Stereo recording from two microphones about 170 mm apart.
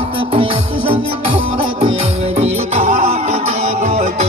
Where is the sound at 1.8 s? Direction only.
40° right (ahead or behind).